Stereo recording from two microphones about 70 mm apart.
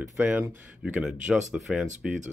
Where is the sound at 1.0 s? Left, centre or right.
Centre.